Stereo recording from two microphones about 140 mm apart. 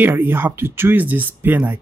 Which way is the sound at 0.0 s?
15° right (ahead or behind).